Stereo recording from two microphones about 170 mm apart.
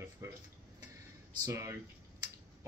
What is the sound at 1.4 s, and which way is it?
Speech, 20° right (ahead or behind).